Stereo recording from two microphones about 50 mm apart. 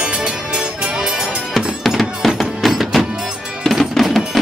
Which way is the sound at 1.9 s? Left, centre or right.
Centre.